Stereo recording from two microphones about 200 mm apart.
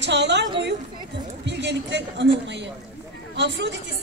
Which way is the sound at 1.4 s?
60° right (ahead or behind).